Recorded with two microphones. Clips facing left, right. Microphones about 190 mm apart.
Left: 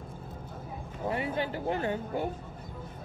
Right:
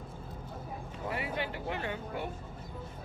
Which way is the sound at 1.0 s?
30° left (ahead or behind).